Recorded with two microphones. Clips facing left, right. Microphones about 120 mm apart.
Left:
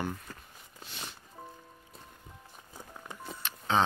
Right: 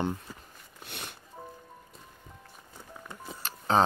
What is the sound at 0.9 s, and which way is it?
Music, 60° right (ahead or behind).